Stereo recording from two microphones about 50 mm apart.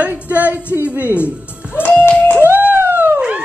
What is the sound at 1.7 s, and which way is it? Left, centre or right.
Music, left.